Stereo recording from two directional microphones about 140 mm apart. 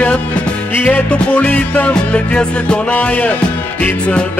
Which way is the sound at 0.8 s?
10° left (ahead or behind).